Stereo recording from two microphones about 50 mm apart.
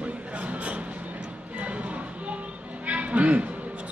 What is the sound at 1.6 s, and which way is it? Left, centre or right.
Music, right.